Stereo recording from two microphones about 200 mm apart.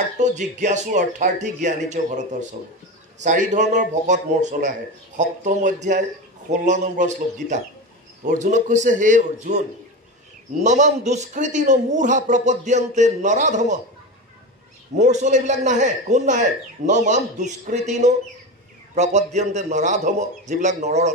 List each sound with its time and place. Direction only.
0.2 s a man's voice: 35° right (ahead or behind)
10.6 s a man's voice: 35° right (ahead or behind)
15.0 s a man's voice: 35° right (ahead or behind)